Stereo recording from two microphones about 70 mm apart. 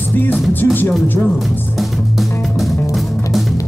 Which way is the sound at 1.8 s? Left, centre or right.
Centre.